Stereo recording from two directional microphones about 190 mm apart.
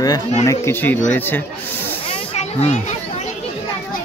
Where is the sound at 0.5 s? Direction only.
10° left (ahead or behind).